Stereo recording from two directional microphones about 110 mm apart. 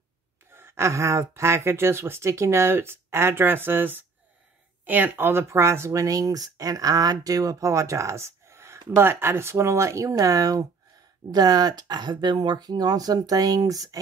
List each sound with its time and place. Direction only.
0.5 s speech: 20° right (ahead or behind)